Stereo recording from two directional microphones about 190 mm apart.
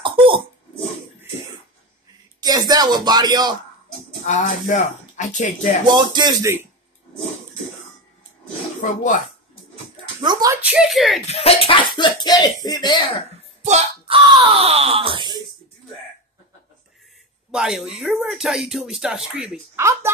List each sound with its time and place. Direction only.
0.0 s cough: 25° right (ahead or behind)
2.4 s speech: 20° right (ahead or behind)
4.3 s speech: 40° left (ahead or behind)
5.9 s speech: 20° right (ahead or behind)
10.2 s speech: 20° right (ahead or behind)
10.6 s speech: 5° right (ahead or behind)
11.2 s speech: 30° left (ahead or behind)
13.6 s wail: 35° right (ahead or behind)
17.6 s speech: 5° right (ahead or behind)